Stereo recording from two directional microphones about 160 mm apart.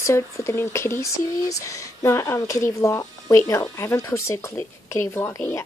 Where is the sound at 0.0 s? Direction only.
20° left (ahead or behind).